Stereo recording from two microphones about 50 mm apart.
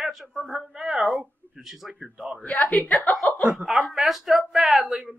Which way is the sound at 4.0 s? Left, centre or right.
Centre.